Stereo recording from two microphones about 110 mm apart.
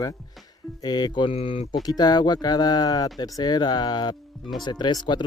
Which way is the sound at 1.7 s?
40° left (ahead or behind).